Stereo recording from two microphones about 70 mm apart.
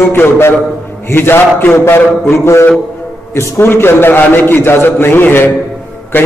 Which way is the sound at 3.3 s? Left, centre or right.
Left.